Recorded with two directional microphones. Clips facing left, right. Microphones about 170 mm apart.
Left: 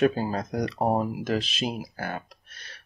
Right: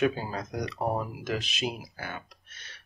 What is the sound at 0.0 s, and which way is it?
Speech, 35° left (ahead or behind).